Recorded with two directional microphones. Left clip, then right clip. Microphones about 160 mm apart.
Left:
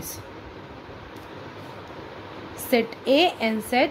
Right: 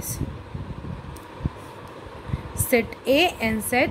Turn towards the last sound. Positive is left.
turn(degrees=-15)  # may be behind; listen again after turning